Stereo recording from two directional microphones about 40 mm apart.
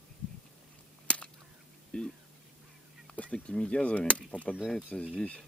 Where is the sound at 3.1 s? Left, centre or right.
Left.